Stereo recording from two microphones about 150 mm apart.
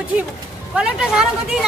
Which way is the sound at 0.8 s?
5° right (ahead or behind).